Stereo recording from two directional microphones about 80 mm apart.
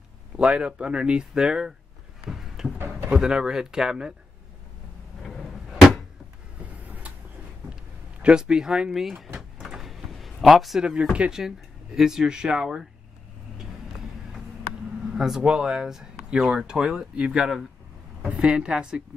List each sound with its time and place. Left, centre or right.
0.4 s speech: centre
2.2 s a sound: centre
3.1 s speech: centre
5.2 s a sound: centre
6.6 s vehicle: centre
8.2 s door: centre
11.1 s speech: centre
15.0 s speech: centre